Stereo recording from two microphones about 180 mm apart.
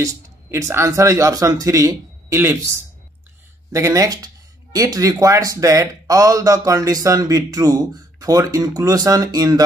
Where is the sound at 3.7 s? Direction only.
15° right (ahead or behind).